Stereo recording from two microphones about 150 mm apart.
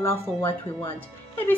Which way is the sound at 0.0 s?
15° left (ahead or behind).